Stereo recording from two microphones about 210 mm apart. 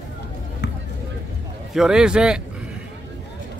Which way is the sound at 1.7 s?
5° right (ahead or behind).